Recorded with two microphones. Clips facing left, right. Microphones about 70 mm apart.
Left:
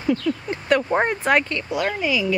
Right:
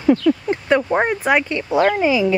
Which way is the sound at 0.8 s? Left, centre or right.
Centre.